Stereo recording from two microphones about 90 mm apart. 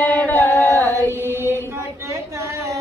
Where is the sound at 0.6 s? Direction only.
25° left (ahead or behind).